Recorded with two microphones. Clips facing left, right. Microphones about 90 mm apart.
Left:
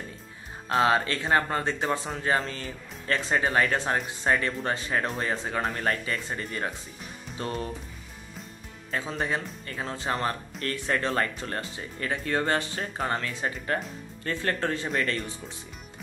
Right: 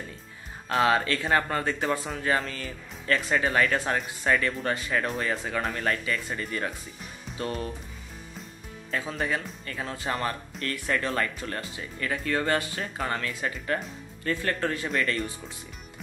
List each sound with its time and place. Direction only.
0.7 s speech: 25° left (ahead or behind)
8.9 s speech: 30° left (ahead or behind)